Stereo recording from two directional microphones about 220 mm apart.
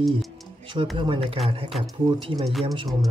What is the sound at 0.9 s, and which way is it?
Speech, 25° right (ahead or behind).